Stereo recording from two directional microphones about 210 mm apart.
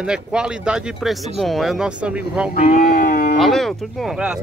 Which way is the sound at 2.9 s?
45° left (ahead or behind).